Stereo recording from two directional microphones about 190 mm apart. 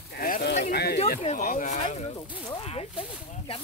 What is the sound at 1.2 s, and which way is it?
Speech, 40° left (ahead or behind).